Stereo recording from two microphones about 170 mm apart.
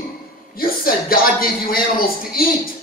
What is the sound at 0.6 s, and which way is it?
A man's voice, 60° left (ahead or behind).